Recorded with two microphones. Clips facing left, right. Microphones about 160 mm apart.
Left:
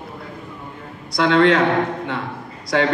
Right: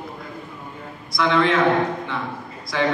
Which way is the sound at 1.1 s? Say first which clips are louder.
Left 4 dB; 75° left (ahead or behind).